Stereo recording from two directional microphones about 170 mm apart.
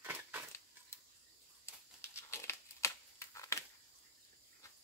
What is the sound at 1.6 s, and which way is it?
Crumpling, 15° left (ahead or behind).